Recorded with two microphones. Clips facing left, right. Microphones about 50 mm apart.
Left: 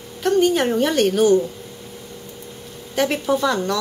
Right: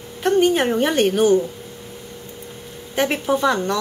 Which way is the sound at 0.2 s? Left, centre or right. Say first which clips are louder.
Right 1 dB; right.